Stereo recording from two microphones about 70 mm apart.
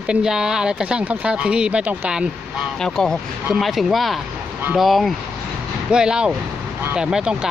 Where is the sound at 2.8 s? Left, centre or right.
Centre.